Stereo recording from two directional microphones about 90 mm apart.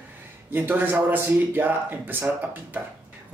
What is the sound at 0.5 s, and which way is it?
Speech, 20° right (ahead or behind).